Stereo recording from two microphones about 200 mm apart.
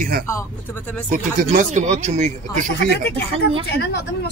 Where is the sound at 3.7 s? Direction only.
55° left (ahead or behind).